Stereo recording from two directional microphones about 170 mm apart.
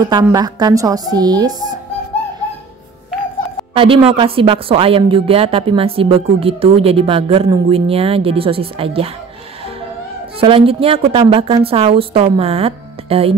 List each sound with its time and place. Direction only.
0.0 s speech: 20° right (ahead or behind)
3.7 s a woman's voice: 30° right (ahead or behind)
10.4 s a woman's voice: 35° right (ahead or behind)